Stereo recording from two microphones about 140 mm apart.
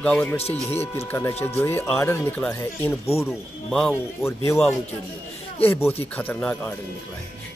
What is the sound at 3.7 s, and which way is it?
Speech, centre (ahead or behind).